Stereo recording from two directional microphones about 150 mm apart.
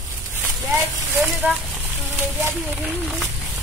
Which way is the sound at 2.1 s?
15° right (ahead or behind).